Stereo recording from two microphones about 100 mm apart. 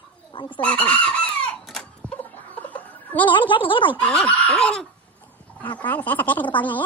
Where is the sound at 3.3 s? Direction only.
55° left (ahead or behind).